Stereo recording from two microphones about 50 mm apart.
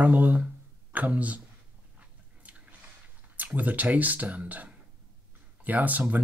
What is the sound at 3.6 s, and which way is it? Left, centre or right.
Speech, right.